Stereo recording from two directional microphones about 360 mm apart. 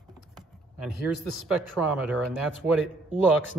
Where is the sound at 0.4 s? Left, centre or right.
Centre.